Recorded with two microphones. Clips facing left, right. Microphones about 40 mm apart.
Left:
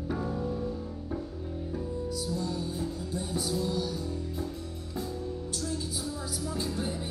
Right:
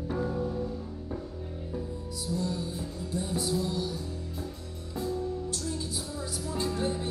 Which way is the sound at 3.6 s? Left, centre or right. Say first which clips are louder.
Even; centre.